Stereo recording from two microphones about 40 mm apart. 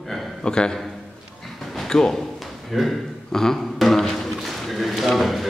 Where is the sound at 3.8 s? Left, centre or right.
Centre.